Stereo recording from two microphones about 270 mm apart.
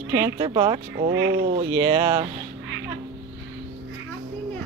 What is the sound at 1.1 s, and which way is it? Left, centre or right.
Speech, right.